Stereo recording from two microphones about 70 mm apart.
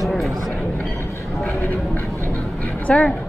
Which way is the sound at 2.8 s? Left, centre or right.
Centre.